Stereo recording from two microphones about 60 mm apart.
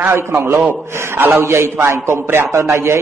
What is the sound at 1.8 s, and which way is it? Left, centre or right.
A man's voice, right.